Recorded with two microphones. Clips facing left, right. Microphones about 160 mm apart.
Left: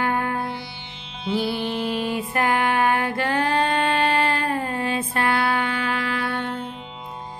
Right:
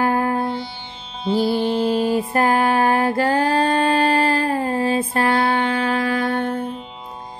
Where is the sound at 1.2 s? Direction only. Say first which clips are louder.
Right 6 dB; 35° right (ahead or behind).